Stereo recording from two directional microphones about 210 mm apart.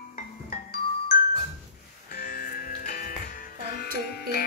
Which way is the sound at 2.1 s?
45° left (ahead or behind).